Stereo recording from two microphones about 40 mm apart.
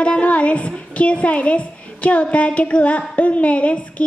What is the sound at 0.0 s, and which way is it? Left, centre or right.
A woman's voice, left.